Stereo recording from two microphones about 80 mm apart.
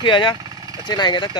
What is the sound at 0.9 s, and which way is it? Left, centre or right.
Speech, left.